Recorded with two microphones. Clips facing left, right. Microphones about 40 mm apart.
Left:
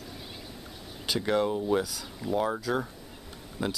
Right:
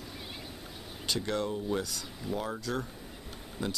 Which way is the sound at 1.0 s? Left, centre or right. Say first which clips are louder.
Left 5 dB; centre.